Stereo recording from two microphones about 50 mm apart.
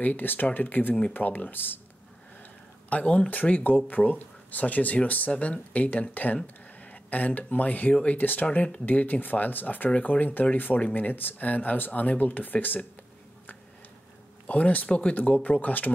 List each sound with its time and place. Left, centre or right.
0.0 s speech: left
2.9 s speech: left
14.5 s speech: left